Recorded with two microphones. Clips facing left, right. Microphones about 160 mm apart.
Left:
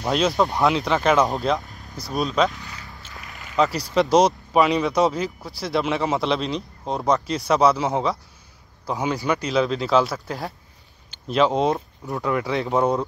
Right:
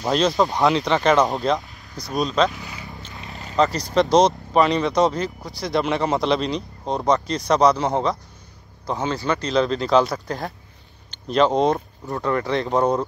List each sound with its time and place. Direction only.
0.0 s speech: centre (ahead or behind)
2.5 s vehicle: 15° right (ahead or behind)
3.5 s speech: 5° left (ahead or behind)